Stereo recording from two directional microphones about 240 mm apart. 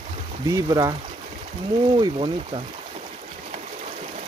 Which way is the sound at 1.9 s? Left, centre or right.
Centre.